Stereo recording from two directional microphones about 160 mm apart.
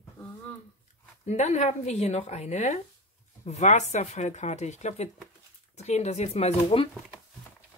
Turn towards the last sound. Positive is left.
turn(degrees=40)  # may be behind; listen again after turning